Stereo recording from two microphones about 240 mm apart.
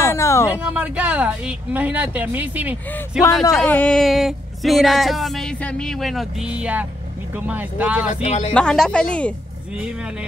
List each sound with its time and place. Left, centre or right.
0.0 s a sound: centre
0.5 s speech: centre
3.4 s speech: centre
8.1 s speech: left
8.5 s speech: centre